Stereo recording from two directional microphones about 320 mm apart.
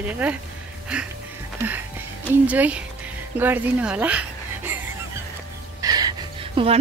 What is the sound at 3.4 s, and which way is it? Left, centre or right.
Speech, centre.